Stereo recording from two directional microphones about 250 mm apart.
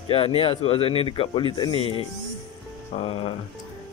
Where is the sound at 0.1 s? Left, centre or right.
Left.